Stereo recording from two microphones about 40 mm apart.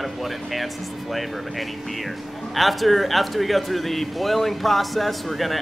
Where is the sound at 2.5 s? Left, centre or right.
Centre.